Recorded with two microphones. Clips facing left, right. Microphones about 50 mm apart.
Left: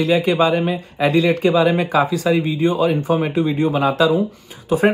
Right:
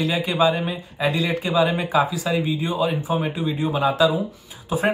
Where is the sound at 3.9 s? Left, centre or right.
Left.